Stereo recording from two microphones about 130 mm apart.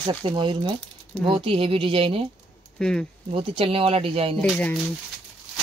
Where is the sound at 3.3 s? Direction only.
45° right (ahead or behind).